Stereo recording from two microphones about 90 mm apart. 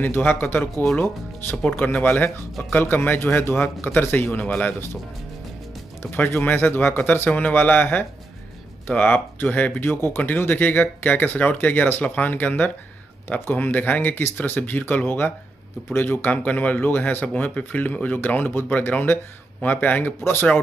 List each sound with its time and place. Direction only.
0.3 s speech: 25° left (ahead or behind)
6.0 s speech: 20° left (ahead or behind)